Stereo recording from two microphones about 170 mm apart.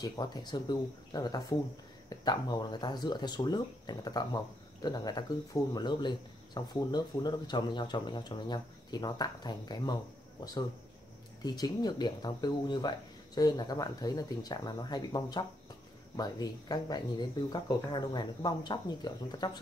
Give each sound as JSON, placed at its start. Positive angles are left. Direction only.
{"t": 0.0, "sound": "speech", "side_deg": 25}